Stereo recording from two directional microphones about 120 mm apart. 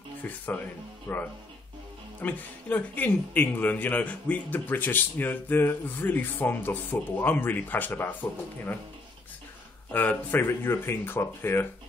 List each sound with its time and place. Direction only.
0.2 s speech: 15° left (ahead or behind)
9.8 s speech: 15° left (ahead or behind)